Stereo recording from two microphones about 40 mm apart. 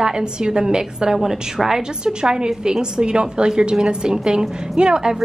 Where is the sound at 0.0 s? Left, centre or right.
Centre.